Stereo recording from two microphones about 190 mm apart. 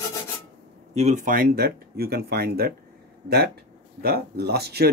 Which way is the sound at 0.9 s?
40° right (ahead or behind).